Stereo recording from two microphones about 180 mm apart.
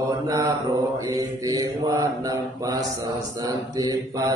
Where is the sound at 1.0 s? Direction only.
20° right (ahead or behind).